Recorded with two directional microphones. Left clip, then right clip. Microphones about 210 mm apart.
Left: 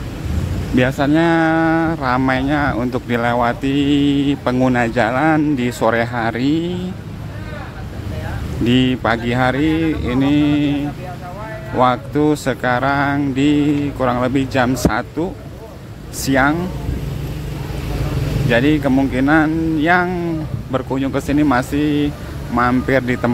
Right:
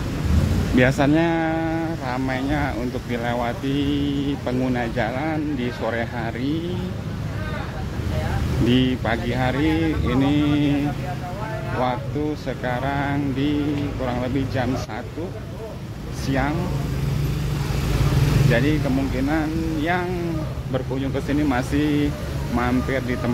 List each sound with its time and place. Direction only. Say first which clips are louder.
0.7 s speech: left 2 dB; 15° left (ahead or behind)
1.1 s speech: left 6 dB; 25° left (ahead or behind)
8.6 s speech: left 6 dB; 25° left (ahead or behind)
11.8 s mantra: left 10 dB; 35° left (ahead or behind)
16.3 s speech: left 9 dB; 30° left (ahead or behind)
18.5 s speech: left 8 dB; 30° left (ahead or behind)